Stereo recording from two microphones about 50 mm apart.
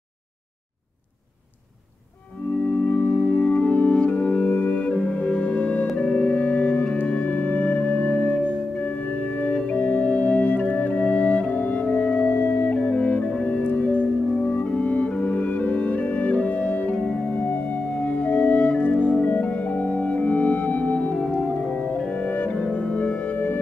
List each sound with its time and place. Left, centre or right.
2.6 s music: left
3.3 s music: centre
5.9 s organ: left
7.0 s music: left
21.4 s organ: centre
21.8 s music: left
23.3 s music: left